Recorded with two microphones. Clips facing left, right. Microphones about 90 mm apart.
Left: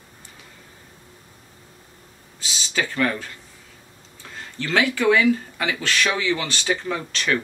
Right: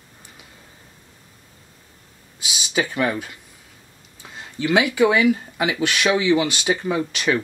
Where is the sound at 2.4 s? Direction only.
15° right (ahead or behind).